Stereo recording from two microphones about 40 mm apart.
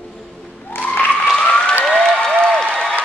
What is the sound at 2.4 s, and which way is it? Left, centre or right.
Applause, centre.